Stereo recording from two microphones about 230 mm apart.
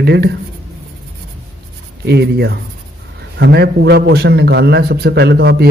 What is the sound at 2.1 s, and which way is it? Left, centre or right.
A man's voice, right.